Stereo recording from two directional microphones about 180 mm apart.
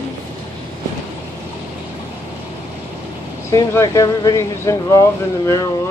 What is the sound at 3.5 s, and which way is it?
Speech, 15° left (ahead or behind).